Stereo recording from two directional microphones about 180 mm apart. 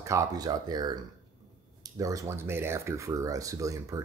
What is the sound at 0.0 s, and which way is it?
Speech, 15° right (ahead or behind).